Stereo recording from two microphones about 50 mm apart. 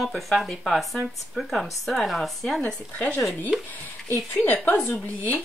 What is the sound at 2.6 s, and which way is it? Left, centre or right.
Speech, left.